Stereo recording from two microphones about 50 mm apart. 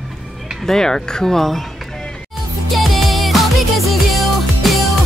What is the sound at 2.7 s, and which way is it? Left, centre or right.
Music, centre.